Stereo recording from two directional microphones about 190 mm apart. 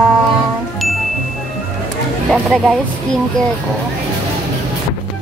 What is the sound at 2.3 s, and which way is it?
Speech, centre (ahead or behind).